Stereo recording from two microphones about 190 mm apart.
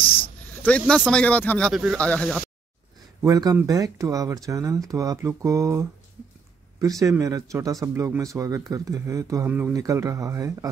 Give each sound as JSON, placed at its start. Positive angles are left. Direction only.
{"t": 0.0, "sound": "snake", "side_deg": 30}
{"t": 0.6, "sound": "speech", "side_deg": 5}
{"t": 1.7, "sound": "speech", "side_deg": 0}
{"t": 3.2, "sound": "speech", "side_deg": -20}
{"t": 7.0, "sound": "speech", "side_deg": -15}